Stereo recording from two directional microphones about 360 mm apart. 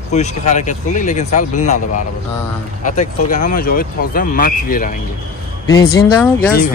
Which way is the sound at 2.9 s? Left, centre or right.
Left.